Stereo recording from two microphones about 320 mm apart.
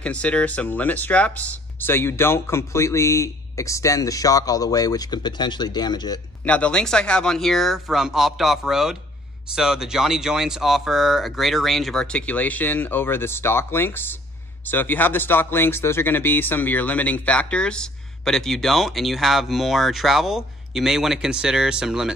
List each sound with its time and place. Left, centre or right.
0.0 s speech: centre